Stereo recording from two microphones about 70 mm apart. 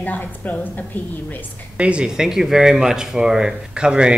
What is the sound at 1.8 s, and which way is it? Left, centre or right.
Speech, centre.